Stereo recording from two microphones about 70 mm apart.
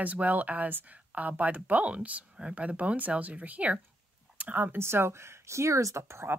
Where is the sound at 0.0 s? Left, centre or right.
Right.